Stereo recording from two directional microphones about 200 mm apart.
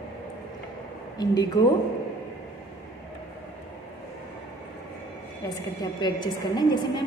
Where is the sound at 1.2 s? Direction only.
20° left (ahead or behind).